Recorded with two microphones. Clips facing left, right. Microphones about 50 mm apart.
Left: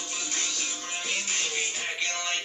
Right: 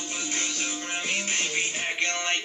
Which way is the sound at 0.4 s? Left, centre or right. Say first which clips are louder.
Right 3 dB; right.